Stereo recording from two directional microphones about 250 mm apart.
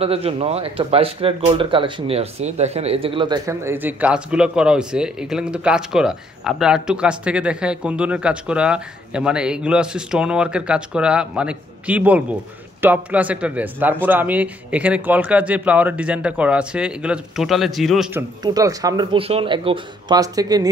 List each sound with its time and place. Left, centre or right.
0.0 s speech: right; by 18.2 s centre
18.4 s speech: centre